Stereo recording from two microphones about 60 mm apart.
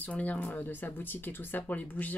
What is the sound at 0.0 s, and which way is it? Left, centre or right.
Speech, left.